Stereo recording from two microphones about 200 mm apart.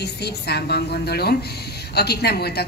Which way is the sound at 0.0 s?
55° left (ahead or behind).